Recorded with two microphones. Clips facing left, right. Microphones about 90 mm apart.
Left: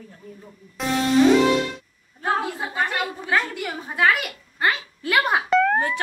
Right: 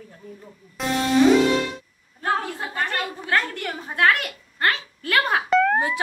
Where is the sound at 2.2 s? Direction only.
10° left (ahead or behind).